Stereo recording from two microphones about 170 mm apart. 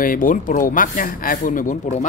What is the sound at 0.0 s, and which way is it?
Speech, 55° left (ahead or behind).